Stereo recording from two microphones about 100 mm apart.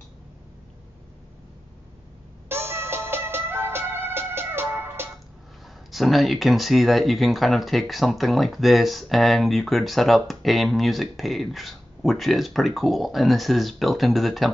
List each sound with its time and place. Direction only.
2.4 s music: 25° right (ahead or behind)
5.9 s speech: centre (ahead or behind)